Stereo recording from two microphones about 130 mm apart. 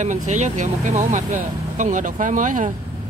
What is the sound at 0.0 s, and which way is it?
Speech, 70° right (ahead or behind).